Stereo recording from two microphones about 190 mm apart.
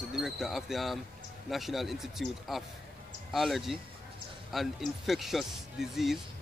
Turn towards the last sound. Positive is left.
turn(degrees=0)  # may be behind; listen again after turning